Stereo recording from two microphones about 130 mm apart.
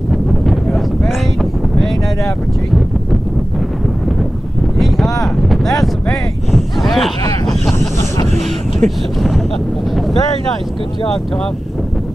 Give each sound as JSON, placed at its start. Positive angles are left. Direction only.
{"t": 0.1, "sound": "wind noise", "side_deg": 0}
{"t": 4.7, "sound": "a sound", "side_deg": 0}
{"t": 5.2, "sound": "cattle", "side_deg": 0}
{"t": 7.8, "sound": "vehicle", "side_deg": 25}
{"t": 8.8, "sound": "speech", "side_deg": 0}